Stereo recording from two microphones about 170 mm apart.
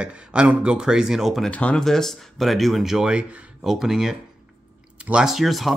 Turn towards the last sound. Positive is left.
turn(degrees=0)  # may be behind; listen again after turning